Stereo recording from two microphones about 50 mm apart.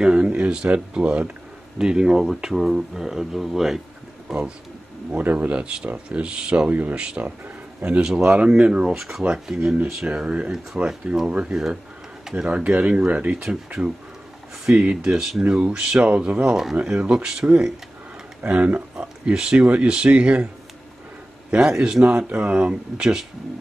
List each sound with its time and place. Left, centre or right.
0.0 s speech: centre
4.3 s speech: right
5.1 s speech: right
5.6 s speech: right
6.7 s speech: right
7.0 s speech: right
7.2 s speech: right
8.0 s speech: centre
8.9 s speech: centre
10.0 s speech: right
11.5 s speech: centre; by 13.4 s right
15.0 s speech: centre
18.4 s speech: right
21.5 s speech: centre